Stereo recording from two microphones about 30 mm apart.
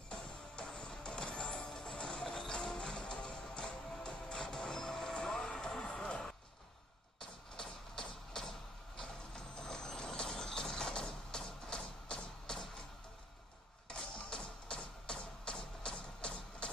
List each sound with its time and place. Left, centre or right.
0.1 s music: left
7.9 s music: left
8.9 s vehicle: left
14.1 s music: left